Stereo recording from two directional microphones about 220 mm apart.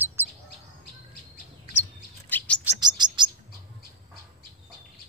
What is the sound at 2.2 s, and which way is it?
Chirp, 5° left (ahead or behind).